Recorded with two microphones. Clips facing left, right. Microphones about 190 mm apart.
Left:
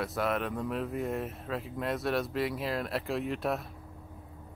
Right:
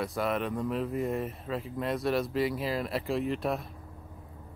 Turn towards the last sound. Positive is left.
turn(degrees=0)  # may be behind; listen again after turning